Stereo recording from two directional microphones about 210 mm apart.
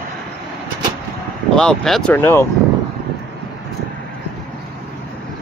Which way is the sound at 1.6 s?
5° left (ahead or behind).